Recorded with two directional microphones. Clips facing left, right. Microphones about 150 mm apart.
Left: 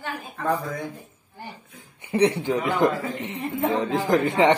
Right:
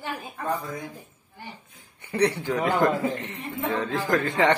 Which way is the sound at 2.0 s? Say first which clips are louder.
Left 3 dB; 20° left (ahead or behind).